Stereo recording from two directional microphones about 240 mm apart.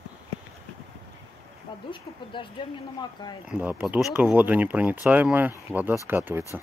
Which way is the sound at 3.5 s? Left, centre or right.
Centre.